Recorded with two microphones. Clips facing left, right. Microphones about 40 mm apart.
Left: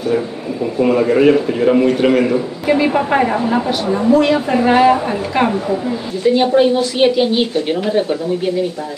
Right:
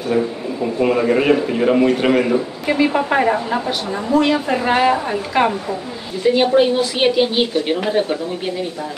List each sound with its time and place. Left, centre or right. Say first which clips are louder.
0.7 s a man's voice: left 3 dB; centre